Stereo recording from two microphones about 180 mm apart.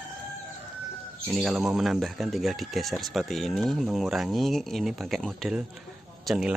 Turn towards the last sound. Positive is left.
turn(degrees=-5)  # may be behind; listen again after turning